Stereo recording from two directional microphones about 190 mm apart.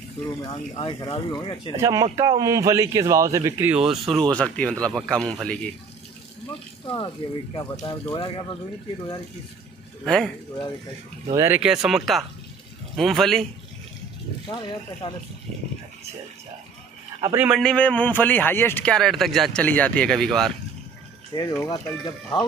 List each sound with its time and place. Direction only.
0.7 s speech: 25° left (ahead or behind)
1.8 s speech: 20° right (ahead or behind); by 5.7 s 5° left (ahead or behind)
7.2 s speech: 30° left (ahead or behind)
10.0 s speech: centre (ahead or behind)
11.3 s speech: 10° right (ahead or behind)
14.5 s speech: 25° left (ahead or behind)
17.2 s a man's voice: 15° right (ahead or behind)
17.5 s speech: 5° left (ahead or behind)
21.3 s speech: 20° left (ahead or behind)